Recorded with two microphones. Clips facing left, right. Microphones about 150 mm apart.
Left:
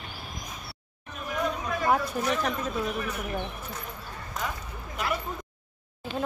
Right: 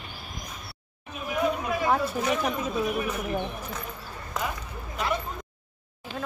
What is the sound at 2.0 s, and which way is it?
Speech, 10° right (ahead or behind).